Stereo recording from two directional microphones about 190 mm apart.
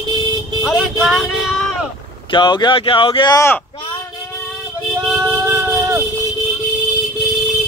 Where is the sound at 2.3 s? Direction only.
25° left (ahead or behind).